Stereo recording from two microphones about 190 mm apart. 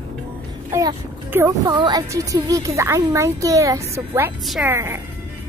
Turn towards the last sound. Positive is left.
turn(degrees=-15)  # may be behind; listen again after turning